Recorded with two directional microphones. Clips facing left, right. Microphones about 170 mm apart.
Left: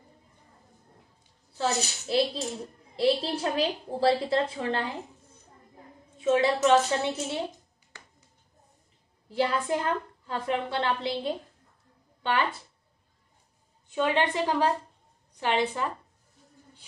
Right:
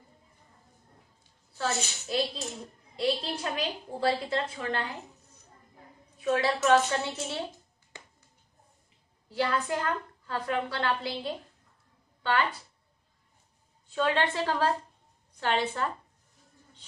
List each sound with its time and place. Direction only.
1.6 s a woman's voice: 30° left (ahead or behind)
6.1 s a woman's voice: 25° left (ahead or behind)
9.3 s a woman's voice: 20° left (ahead or behind)
13.8 s a woman's voice: 15° left (ahead or behind)